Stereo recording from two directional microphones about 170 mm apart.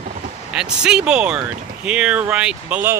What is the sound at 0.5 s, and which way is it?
Speech, 5° right (ahead or behind).